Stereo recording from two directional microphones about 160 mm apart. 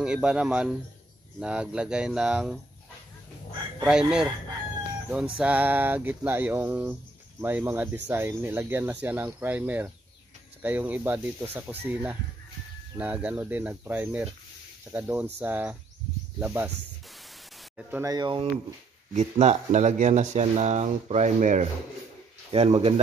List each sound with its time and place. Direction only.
0.0 s speech: 5° right (ahead or behind)
3.8 s speech: 5° right (ahead or behind)
18.0 s speech: 25° right (ahead or behind)
19.1 s speech: 45° right (ahead or behind)